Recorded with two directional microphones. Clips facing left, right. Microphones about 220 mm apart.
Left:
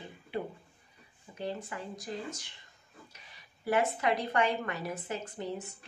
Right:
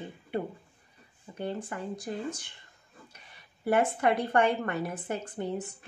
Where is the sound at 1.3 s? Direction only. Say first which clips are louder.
Right 3 dB; 55° right (ahead or behind).